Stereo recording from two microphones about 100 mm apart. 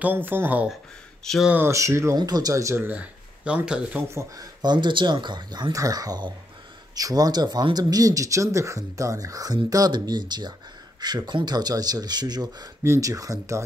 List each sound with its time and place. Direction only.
0.0 s speech: 20° right (ahead or behind)
1.2 s speech: 5° left (ahead or behind)
1.7 s speech: 30° right (ahead or behind)
2.1 s speech: 45° right (ahead or behind)
2.9 s speech: 15° right (ahead or behind)
4.1 s speech: 30° right (ahead or behind)
4.6 s speech: 50° right (ahead or behind)
12.8 s speech: 30° right (ahead or behind)